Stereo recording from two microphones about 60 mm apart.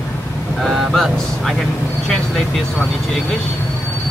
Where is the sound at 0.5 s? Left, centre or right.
Centre.